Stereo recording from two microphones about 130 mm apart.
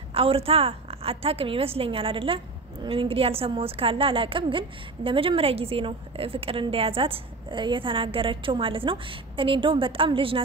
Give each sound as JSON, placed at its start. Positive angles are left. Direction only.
{"t": 0.1, "sound": "a woman's voice", "side_deg": -45}